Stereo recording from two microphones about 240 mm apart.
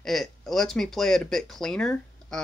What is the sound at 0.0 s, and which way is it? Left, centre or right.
Speech, centre.